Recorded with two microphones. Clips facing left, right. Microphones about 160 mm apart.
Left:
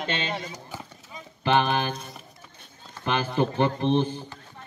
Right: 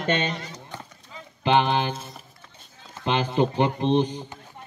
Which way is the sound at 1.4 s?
20° right (ahead or behind).